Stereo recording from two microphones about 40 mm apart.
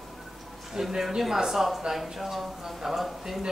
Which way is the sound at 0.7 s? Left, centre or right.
Centre.